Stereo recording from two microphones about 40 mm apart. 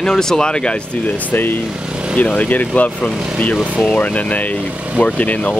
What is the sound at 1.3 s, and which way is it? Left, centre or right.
Speech, left.